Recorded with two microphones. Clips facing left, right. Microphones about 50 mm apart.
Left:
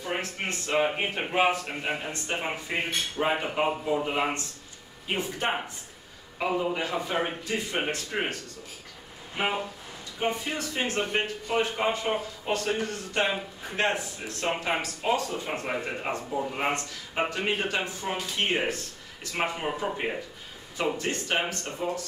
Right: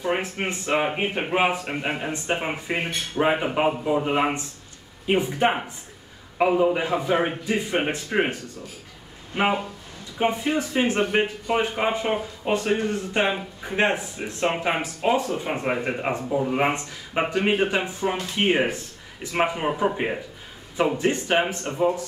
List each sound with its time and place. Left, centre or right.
0.0 s speech: right
9.3 s speech: right